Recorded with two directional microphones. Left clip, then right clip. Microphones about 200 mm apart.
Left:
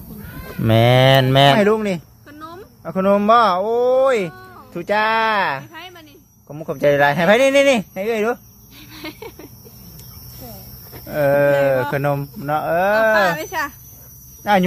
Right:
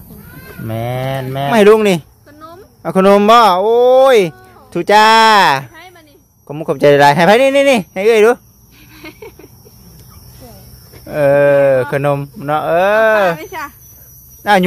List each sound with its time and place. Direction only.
0.7 s mantra: 45° left (ahead or behind)
1.6 s speech: 40° right (ahead or behind)
2.2 s a sound: 40° left (ahead or behind)
2.8 s speech: 40° right (ahead or behind)
5.7 s a sound: 45° left (ahead or behind)
6.4 s speech: 35° right (ahead or behind)
7.9 s speech: 45° right (ahead or behind)
8.9 s a sound: 60° left (ahead or behind)
11.1 s speech: 30° right (ahead or behind)
13.3 s mantra: 45° left (ahead or behind)
14.4 s speech: 30° right (ahead or behind)